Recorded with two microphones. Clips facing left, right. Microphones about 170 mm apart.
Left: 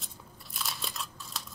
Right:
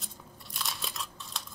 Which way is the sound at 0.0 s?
Centre (ahead or behind).